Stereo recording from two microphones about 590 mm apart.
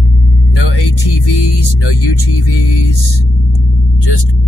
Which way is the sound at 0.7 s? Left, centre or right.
Left.